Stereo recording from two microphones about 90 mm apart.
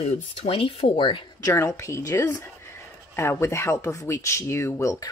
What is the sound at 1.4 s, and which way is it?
Speech, 30° left (ahead or behind).